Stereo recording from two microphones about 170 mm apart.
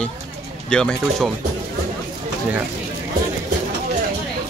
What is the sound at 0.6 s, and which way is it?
Speech, 5° left (ahead or behind).